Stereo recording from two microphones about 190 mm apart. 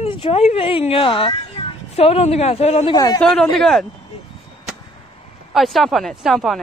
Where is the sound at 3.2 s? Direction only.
Centre (ahead or behind).